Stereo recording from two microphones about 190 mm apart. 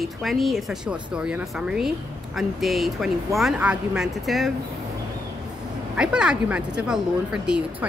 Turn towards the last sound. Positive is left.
turn(degrees=-5)  # may be behind; listen again after turning